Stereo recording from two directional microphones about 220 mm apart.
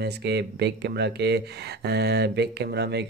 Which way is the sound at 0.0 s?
50° right (ahead or behind).